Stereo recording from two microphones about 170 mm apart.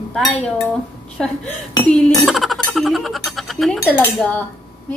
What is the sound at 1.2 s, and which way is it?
Speech, 5° left (ahead or behind).